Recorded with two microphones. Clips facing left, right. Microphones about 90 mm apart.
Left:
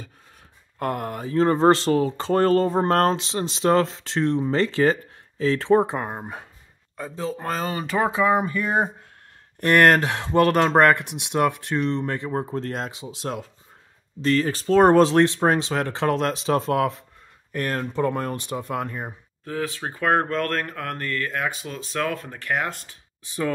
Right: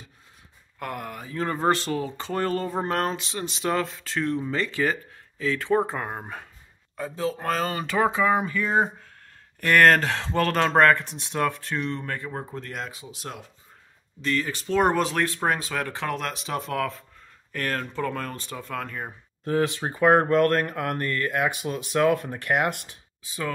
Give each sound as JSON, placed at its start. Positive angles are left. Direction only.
{"t": 0.7, "sound": "speech", "side_deg": 30}
{"t": 6.0, "sound": "speech", "side_deg": 5}
{"t": 9.9, "sound": "speech", "side_deg": 15}
{"t": 14.2, "sound": "speech", "side_deg": 35}
{"t": 16.7, "sound": "speech", "side_deg": 25}
{"t": 19.4, "sound": "speech", "side_deg": -20}